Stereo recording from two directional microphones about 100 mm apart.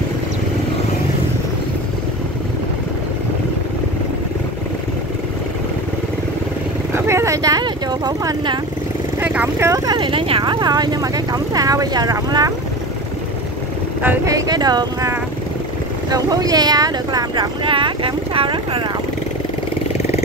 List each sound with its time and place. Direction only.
6.9 s vehicle: 30° right (ahead or behind)
9.2 s vehicle: 20° right (ahead or behind)
9.9 s speech: 55° right (ahead or behind); by 12.5 s 40° right (ahead or behind)
14.2 s speech: 40° right (ahead or behind)
17.6 s speech: 60° right (ahead or behind)